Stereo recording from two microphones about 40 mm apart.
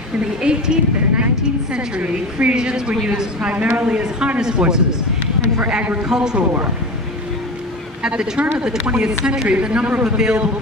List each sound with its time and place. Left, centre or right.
0.2 s a woman's voice: right
2.5 s speech: centre
3.5 s a woman's voice: right
4.4 s speech: centre
6.0 s speech: centre
8.4 s speech: right